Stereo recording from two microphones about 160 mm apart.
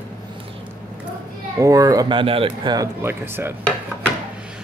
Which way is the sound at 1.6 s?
20° right (ahead or behind).